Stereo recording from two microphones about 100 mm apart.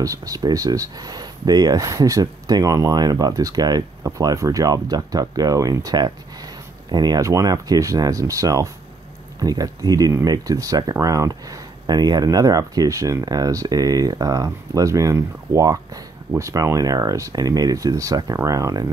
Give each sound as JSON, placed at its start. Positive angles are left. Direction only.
{"t": 0.0, "sound": "speech", "side_deg": -35}